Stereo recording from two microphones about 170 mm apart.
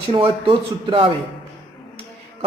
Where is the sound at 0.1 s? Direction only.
30° right (ahead or behind).